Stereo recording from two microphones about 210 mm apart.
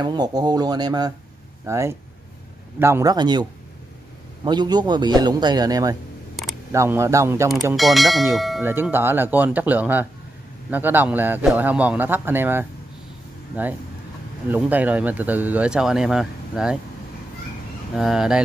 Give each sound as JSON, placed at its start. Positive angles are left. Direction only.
{"t": 0.0, "sound": "a man's voice", "side_deg": -20}
{"t": 4.5, "sound": "a man's voice", "side_deg": -20}
{"t": 7.7, "sound": "speech", "side_deg": 0}
{"t": 14.5, "sound": "speech", "side_deg": -5}
{"t": 17.9, "sound": "speech", "side_deg": 0}